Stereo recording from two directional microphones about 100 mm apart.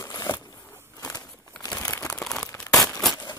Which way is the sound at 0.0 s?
35° left (ahead or behind).